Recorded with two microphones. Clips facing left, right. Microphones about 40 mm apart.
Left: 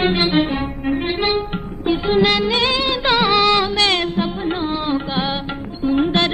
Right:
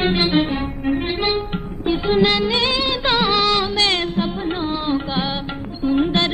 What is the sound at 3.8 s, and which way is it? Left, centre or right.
Music, left.